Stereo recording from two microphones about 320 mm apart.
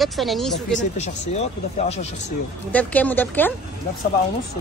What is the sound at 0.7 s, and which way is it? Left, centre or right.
Speech, left.